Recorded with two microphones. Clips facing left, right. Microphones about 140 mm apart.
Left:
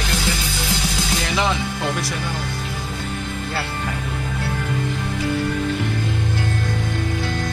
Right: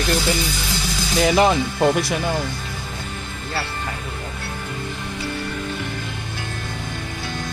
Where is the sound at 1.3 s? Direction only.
50° right (ahead or behind).